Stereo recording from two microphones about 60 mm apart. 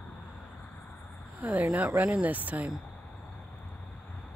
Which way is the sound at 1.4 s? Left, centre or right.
Right.